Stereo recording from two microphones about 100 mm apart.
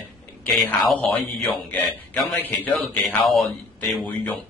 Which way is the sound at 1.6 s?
15° left (ahead or behind).